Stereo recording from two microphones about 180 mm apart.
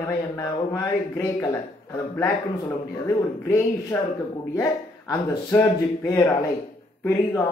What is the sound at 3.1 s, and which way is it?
Speech, 15° left (ahead or behind).